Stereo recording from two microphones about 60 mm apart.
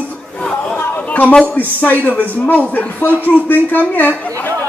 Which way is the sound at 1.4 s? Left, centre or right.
Left.